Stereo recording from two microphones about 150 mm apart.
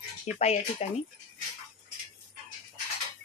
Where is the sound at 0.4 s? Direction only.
45° left (ahead or behind).